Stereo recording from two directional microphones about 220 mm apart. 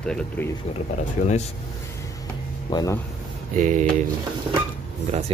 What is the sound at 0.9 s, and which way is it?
Speech, 30° left (ahead or behind).